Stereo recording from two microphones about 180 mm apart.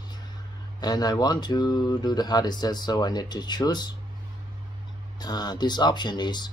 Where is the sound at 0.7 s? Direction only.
20° left (ahead or behind).